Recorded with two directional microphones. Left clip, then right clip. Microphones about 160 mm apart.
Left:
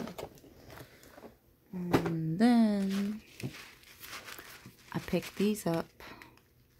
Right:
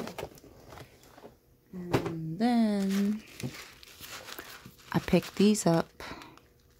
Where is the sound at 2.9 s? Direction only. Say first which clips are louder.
Right 5 dB; 35° right (ahead or behind).